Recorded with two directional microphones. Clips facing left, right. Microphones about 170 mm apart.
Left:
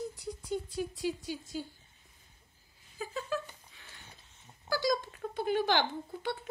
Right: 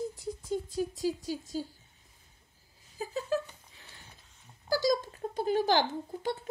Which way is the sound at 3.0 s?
35° right (ahead or behind).